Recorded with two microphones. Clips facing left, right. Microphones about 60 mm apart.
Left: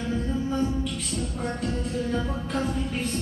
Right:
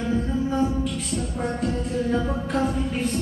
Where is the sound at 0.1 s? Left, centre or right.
Centre.